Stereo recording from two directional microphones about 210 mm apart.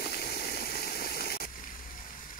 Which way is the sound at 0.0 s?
50° left (ahead or behind).